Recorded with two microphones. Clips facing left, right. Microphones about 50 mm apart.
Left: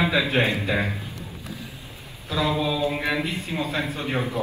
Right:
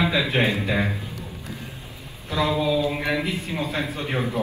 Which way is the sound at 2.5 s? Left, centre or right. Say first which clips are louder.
Right 3 dB; left.